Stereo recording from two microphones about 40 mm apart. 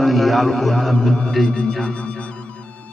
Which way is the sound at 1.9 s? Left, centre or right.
Left.